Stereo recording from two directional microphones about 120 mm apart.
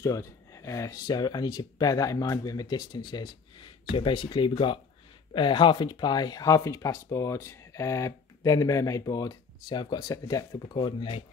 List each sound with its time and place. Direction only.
0.0 s speech: 25° left (ahead or behind); by 11.2 s 45° left (ahead or behind)